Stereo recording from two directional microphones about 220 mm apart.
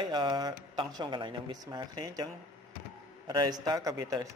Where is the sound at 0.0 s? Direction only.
20° right (ahead or behind).